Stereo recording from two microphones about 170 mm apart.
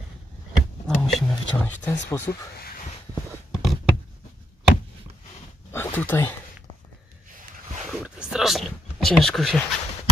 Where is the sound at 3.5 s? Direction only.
Centre (ahead or behind).